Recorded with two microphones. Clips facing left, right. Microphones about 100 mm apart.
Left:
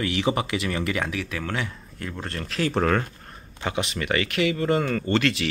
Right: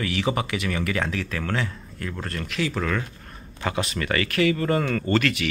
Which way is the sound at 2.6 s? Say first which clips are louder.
Left 4 dB; 50° left (ahead or behind).